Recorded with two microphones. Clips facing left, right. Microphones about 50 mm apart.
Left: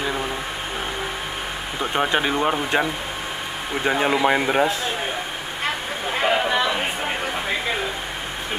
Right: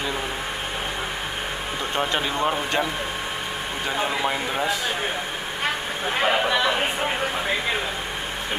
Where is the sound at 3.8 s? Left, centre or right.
Left.